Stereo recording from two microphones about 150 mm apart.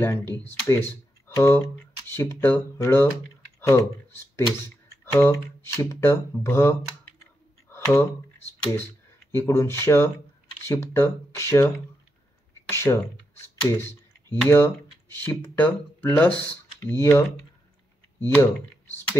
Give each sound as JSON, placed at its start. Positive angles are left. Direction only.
{"t": 0.0, "sound": "speech", "side_deg": 15}
{"t": 7.7, "sound": "a sound", "side_deg": 15}
{"t": 9.4, "sound": "speech", "side_deg": 15}
{"t": 12.6, "sound": "computer keyboard", "side_deg": 15}
{"t": 14.5, "sound": "speech", "side_deg": 15}
{"t": 18.2, "sound": "speech", "side_deg": 15}